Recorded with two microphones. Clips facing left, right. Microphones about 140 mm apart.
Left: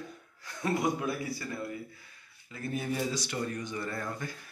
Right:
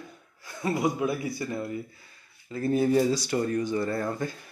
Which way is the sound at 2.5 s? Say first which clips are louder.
Right 10 dB; 35° right (ahead or behind).